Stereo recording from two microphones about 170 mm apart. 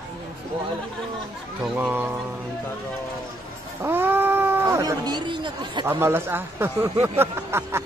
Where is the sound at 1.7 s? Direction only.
10° right (ahead or behind).